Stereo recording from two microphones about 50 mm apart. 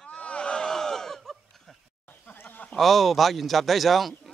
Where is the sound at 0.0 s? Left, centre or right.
Left; by 1.3 s centre.